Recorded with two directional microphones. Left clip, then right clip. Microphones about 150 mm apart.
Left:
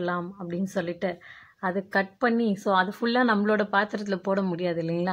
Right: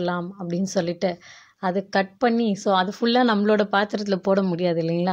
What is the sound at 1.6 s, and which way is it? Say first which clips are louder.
Speech: right 4 dB; 35° right (ahead or behind).